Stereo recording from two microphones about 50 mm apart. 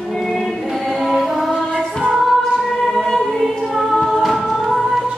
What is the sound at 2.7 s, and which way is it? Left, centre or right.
Choir, centre.